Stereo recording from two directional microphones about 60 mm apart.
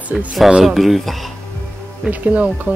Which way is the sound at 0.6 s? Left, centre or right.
Centre.